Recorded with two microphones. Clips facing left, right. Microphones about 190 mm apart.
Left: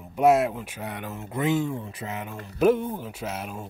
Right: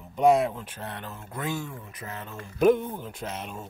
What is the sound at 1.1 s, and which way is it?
Speech, 25° left (ahead or behind).